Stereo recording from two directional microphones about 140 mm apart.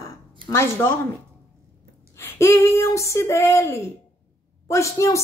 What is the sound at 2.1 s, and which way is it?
Speech, 20° left (ahead or behind).